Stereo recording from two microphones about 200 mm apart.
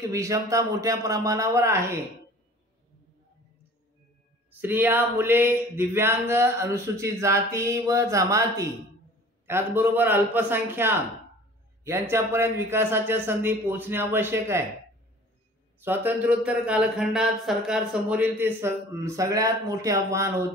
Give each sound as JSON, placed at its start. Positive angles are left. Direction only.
{"t": 0.0, "sound": "speech", "side_deg": -15}
{"t": 4.6, "sound": "speech", "side_deg": -10}
{"t": 15.8, "sound": "speech", "side_deg": -10}